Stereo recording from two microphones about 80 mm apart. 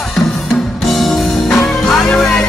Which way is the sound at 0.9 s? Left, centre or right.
Centre.